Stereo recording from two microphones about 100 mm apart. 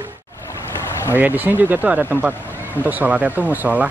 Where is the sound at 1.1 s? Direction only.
20° right (ahead or behind).